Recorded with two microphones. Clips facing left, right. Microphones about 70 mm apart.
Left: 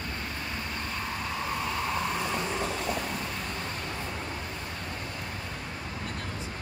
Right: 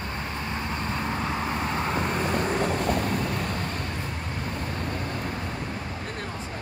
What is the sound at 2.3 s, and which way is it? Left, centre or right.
Vehicle, right.